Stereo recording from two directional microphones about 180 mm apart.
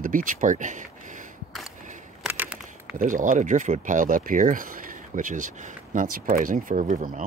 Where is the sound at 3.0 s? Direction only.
45° right (ahead or behind).